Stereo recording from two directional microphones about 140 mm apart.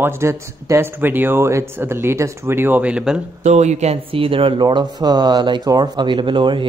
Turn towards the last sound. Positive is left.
turn(degrees=-35)  # may be behind; listen again after turning